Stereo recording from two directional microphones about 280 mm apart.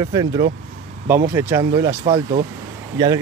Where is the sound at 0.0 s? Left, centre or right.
Centre.